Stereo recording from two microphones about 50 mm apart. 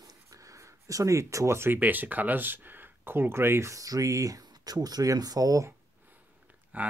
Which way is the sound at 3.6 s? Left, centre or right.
Right.